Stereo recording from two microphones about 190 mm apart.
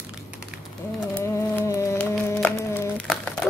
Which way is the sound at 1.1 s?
10° left (ahead or behind).